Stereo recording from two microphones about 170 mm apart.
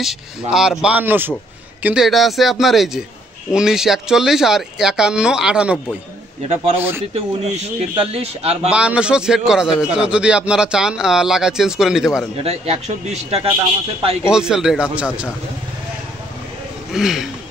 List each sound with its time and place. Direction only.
0.0 s speech: centre (ahead or behind)
6.4 s a man's voice: 35° right (ahead or behind)
8.6 s speech: 5° right (ahead or behind)
12.4 s a man's voice: 35° right (ahead or behind)
14.2 s speech: 5° right (ahead or behind)
16.9 s speech: centre (ahead or behind)